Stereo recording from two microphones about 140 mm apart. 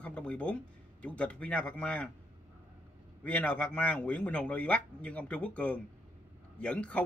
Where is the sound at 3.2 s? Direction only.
10° left (ahead or behind).